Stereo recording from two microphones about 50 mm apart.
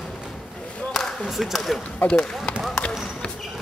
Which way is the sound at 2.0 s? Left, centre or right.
Left.